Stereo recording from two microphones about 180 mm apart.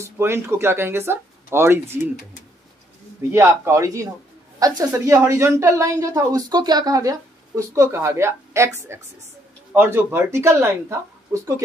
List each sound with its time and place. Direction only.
0.0 s a woman's voice: 15° right (ahead or behind)
3.3 s a woman's voice: 15° right (ahead or behind)